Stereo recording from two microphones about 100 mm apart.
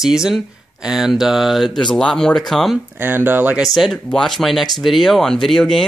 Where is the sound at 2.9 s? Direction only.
20° right (ahead or behind).